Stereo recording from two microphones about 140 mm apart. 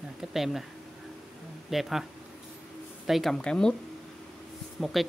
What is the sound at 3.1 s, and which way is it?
Speech, centre (ahead or behind).